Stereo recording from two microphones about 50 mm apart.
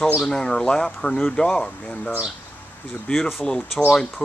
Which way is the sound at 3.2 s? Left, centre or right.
Centre.